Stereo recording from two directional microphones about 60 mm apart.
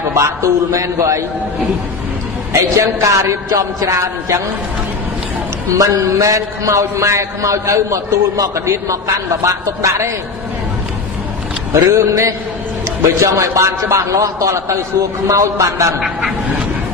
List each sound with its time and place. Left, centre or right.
0.1 s a man's voice: right
2.5 s a man's voice: right
5.8 s a man's voice: right
11.7 s a man's voice: right
16.0 s speech: centre